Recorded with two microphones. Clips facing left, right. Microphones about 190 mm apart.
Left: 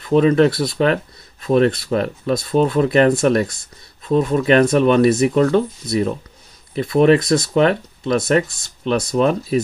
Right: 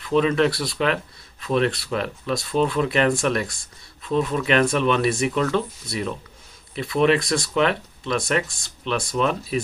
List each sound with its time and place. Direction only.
0.0 s speech: 40° left (ahead or behind)